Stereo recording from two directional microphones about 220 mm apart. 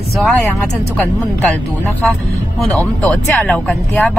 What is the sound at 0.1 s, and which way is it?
Speech, centre (ahead or behind).